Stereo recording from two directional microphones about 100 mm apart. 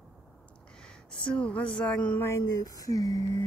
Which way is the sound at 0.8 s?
10° left (ahead or behind).